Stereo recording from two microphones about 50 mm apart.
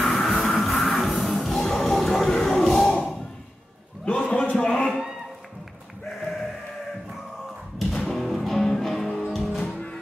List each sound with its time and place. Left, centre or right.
0.0 s music: centre
4.0 s a sound: centre
7.8 s music: centre